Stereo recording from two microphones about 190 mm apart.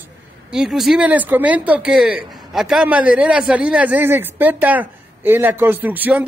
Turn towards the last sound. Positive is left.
turn(degrees=-10)  # may be behind; listen again after turning